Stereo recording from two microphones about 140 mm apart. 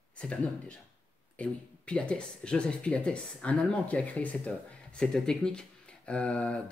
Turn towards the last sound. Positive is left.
turn(degrees=10)  # may be behind; listen again after turning